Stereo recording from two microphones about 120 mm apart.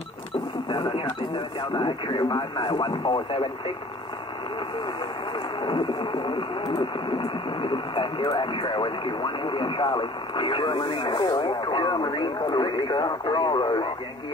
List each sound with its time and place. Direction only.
0.7 s radio: 35° left (ahead or behind)
1.6 s speech: 45° left (ahead or behind)
2.2 s speech: 35° left (ahead or behind)
5.6 s speech: 40° left (ahead or behind)
12.5 s speech: 50° left (ahead or behind)
12.8 s speech: 40° left (ahead or behind)